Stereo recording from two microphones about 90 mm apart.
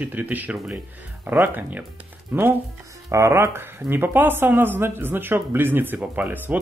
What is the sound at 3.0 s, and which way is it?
Speech, 35° right (ahead or behind).